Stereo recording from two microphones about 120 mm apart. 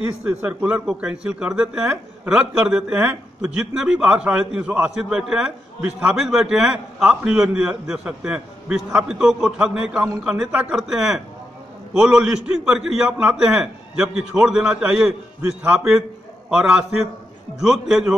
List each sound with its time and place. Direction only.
0.2 s a man's voice: 10° right (ahead or behind)